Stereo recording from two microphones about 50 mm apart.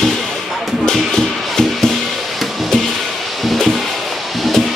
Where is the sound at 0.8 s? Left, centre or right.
Centre.